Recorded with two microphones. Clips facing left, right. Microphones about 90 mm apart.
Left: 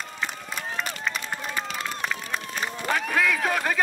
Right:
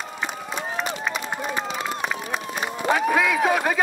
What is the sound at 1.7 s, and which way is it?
Run, 5° right (ahead or behind).